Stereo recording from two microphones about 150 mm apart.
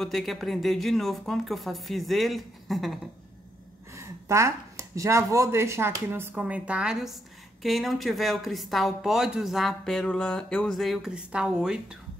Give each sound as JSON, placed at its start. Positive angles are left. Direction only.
{"t": 0.0, "sound": "speech", "side_deg": 0}
{"t": 3.9, "sound": "speech", "side_deg": -20}